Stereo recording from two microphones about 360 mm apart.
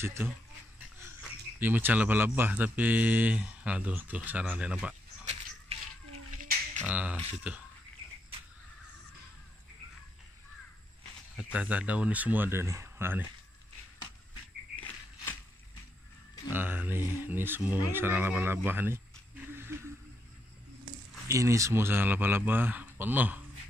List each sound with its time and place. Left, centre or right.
0.0 s speech: centre
1.6 s speech: centre
5.2 s a sound: centre
6.9 s speech: centre
11.3 s speech: centre
16.5 s speech: centre
21.3 s speech: centre